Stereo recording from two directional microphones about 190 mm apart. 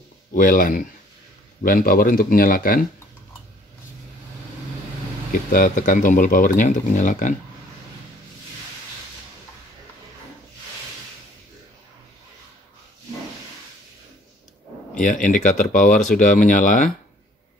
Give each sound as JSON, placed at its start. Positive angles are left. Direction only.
{"t": 0.3, "sound": "speech", "side_deg": 50}
{"t": 5.3, "sound": "speech", "side_deg": 45}
{"t": 15.0, "sound": "speech", "side_deg": 45}